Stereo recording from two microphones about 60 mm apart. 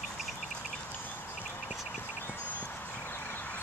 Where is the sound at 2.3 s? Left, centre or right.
Left.